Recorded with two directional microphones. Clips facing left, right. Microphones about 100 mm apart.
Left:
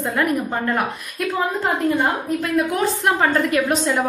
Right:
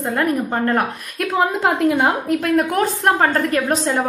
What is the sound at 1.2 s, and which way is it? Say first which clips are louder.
A woman's voice: right 4 dB; 70° right (ahead or behind).